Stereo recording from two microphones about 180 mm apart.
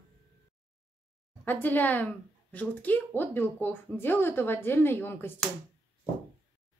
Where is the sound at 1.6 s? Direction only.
10° left (ahead or behind).